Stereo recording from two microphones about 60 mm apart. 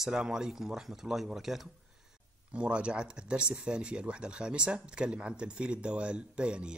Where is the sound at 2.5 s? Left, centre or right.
Centre.